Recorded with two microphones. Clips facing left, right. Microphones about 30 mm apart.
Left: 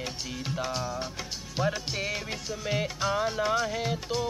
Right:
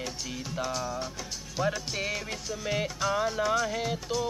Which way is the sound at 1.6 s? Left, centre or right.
Centre.